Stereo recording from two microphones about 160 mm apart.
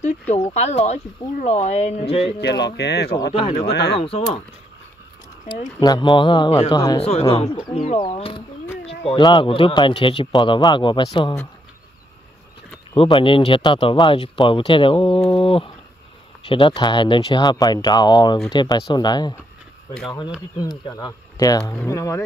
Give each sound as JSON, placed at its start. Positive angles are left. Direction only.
{"t": 0.5, "sound": "speech", "side_deg": 40}
{"t": 2.4, "sound": "speech", "side_deg": 90}
{"t": 4.0, "sound": "speech", "side_deg": 40}
{"t": 5.8, "sound": "speech", "side_deg": 25}
{"t": 7.0, "sound": "speech", "side_deg": 40}
{"t": 12.9, "sound": "speech", "side_deg": 35}
{"t": 20.6, "sound": "speech", "side_deg": 25}